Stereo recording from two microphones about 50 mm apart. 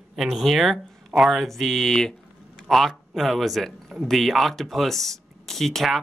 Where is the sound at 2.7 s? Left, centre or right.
Centre.